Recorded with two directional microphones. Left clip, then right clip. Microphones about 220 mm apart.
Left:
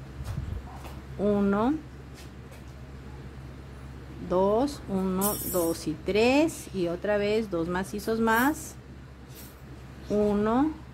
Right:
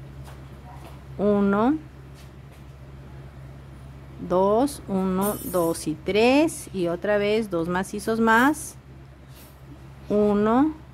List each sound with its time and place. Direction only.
1.2 s speech: 20° right (ahead or behind)
4.3 s speech: 20° right (ahead or behind)
10.0 s speech: 20° right (ahead or behind)